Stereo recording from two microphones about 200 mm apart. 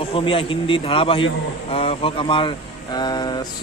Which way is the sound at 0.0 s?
25° left (ahead or behind).